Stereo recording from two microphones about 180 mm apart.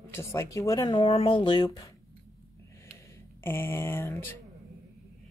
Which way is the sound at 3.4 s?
10° left (ahead or behind).